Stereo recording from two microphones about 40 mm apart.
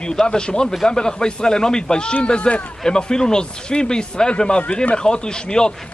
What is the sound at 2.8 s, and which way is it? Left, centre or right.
A man's voice, centre.